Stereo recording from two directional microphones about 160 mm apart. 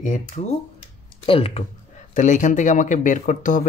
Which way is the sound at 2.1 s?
50° left (ahead or behind).